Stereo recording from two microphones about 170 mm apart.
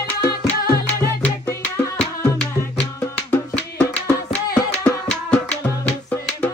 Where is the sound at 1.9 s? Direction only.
5° left (ahead or behind).